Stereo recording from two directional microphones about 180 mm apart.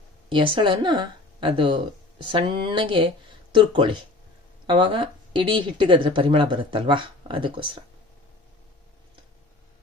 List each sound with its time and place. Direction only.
0.3 s speech: 30° right (ahead or behind)